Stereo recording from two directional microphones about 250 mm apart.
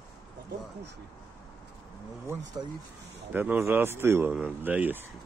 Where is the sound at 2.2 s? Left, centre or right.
Centre.